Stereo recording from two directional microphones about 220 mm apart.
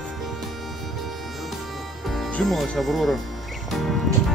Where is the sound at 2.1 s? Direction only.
5° left (ahead or behind).